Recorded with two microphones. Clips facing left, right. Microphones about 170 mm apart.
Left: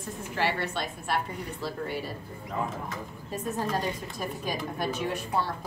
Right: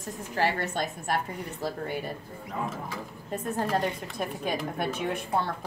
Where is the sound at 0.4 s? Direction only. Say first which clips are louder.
Right 2 dB; 45° right (ahead or behind).